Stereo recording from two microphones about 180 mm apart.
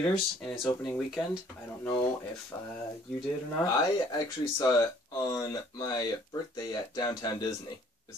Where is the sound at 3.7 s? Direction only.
20° left (ahead or behind).